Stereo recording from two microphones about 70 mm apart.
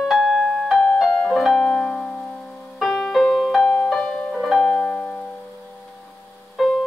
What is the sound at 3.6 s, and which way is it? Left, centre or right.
Music, left.